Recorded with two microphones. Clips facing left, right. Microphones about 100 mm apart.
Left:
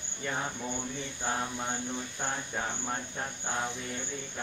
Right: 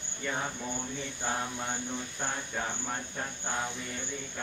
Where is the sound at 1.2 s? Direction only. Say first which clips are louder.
Left 1 dB; 10° left (ahead or behind).